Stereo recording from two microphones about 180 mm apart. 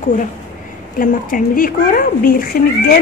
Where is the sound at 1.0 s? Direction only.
50° left (ahead or behind).